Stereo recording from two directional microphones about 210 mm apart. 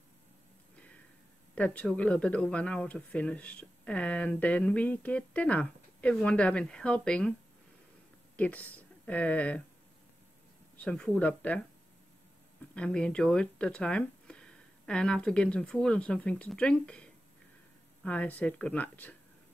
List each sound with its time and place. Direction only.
1.5 s speech: 5° left (ahead or behind)
8.4 s speech: 5° left (ahead or behind)
10.8 s speech: 5° left (ahead or behind)
12.7 s speech: 5° left (ahead or behind)